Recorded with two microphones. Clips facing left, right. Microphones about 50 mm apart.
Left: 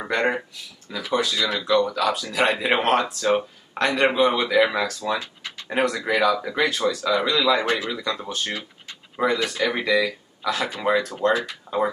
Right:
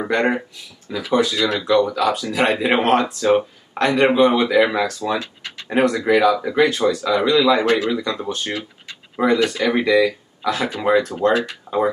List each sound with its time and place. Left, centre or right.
0.0 s speech: centre
9.2 s speech: centre
9.6 s speech: centre
11.7 s speech: right